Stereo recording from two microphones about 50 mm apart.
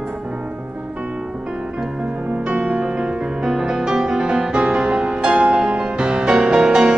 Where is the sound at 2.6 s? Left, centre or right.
Centre.